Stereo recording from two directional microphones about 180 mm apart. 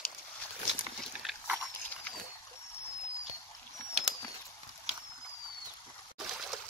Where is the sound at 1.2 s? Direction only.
5° right (ahead or behind).